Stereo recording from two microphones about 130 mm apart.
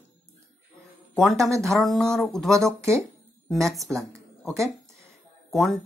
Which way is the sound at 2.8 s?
20° right (ahead or behind).